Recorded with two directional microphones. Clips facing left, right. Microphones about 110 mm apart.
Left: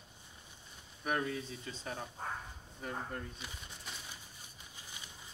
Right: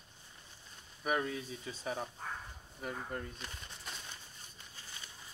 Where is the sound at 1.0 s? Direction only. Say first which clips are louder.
Right 1 dB; centre (ahead or behind).